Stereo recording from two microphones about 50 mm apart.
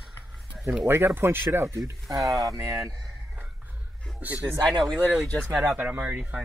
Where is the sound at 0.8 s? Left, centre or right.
Right.